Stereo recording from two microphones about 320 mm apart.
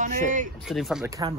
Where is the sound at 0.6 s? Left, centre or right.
Centre.